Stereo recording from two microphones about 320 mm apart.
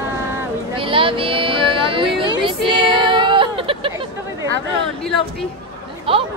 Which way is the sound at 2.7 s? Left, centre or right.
Centre.